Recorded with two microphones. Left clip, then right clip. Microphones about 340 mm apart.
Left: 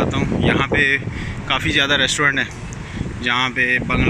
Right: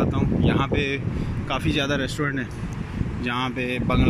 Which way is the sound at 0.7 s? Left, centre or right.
Centre.